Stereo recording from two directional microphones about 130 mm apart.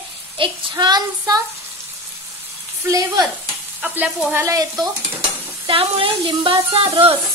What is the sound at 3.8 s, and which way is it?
Stir, 10° right (ahead or behind).